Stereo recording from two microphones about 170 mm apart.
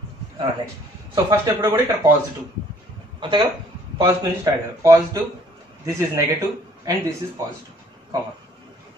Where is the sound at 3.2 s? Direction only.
30° right (ahead or behind).